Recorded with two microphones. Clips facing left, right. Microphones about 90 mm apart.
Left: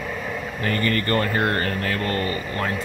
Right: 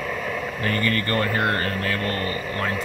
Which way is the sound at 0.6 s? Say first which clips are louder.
Left 2 dB; 35° left (ahead or behind).